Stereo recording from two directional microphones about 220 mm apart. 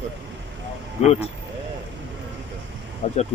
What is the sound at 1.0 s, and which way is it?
Speech, 30° left (ahead or behind).